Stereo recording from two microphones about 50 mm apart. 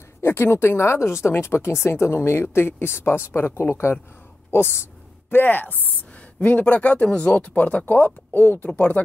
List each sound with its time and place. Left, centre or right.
0.2 s speech: left
5.3 s speech: left